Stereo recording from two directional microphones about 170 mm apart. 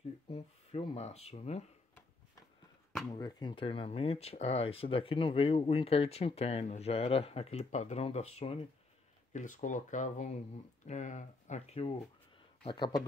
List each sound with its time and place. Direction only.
0.3 s speech: 35° left (ahead or behind)
3.1 s speech: 25° left (ahead or behind)
9.3 s speech: 50° left (ahead or behind); by 13.0 s 25° left (ahead or behind)